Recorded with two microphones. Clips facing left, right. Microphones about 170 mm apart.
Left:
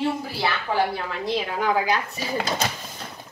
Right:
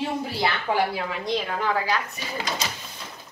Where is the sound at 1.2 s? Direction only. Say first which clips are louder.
Left 3 dB; 5° left (ahead or behind).